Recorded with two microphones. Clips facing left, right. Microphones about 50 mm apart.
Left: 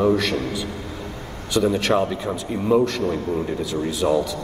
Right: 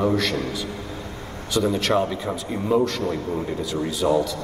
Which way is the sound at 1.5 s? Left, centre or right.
Centre.